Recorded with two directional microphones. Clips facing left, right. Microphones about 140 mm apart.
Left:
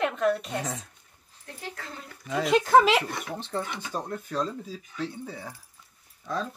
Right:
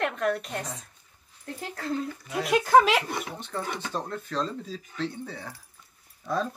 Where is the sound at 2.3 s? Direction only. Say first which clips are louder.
Even; 5° right (ahead or behind).